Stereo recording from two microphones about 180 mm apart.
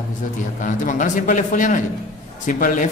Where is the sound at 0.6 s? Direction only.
45° left (ahead or behind).